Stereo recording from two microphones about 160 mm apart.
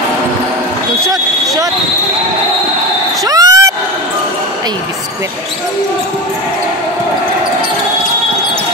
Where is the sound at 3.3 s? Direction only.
20° right (ahead or behind).